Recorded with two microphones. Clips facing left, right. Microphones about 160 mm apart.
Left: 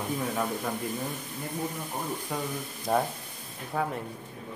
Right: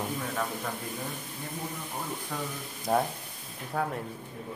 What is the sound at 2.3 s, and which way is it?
Speech, 15° left (ahead or behind).